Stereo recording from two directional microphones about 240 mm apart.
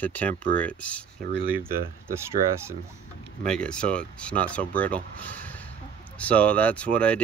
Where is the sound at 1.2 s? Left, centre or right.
Right.